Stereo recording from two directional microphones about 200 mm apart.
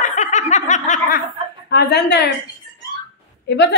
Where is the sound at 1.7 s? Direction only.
55° left (ahead or behind).